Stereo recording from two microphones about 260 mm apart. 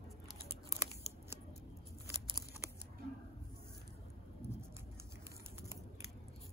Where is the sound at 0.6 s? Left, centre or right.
Centre.